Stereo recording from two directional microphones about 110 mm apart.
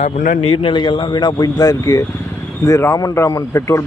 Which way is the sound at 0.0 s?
80° left.